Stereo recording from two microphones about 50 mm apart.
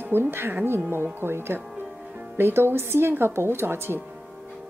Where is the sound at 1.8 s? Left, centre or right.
Right.